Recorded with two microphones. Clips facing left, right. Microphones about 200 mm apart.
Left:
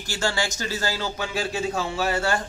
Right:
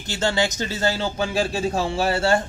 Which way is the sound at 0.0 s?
20° right (ahead or behind).